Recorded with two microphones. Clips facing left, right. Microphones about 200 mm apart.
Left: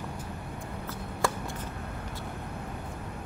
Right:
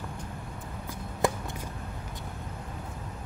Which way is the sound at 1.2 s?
20° right (ahead or behind).